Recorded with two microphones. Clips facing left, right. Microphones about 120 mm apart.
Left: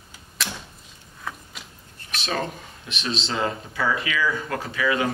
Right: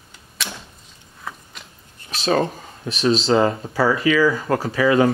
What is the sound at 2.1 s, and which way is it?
Speech, 35° right (ahead or behind).